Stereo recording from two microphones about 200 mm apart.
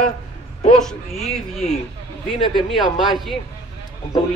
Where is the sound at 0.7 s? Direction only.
Centre (ahead or behind).